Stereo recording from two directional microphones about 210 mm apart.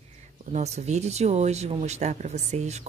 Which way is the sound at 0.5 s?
30° right (ahead or behind).